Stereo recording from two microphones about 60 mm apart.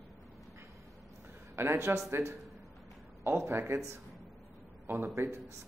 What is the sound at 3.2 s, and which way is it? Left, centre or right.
Speech, right.